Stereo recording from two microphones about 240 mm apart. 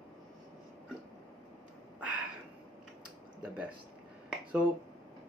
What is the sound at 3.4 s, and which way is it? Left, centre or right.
Speech, centre.